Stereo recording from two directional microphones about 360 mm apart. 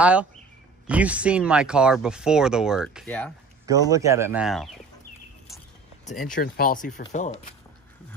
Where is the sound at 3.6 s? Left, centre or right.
Centre.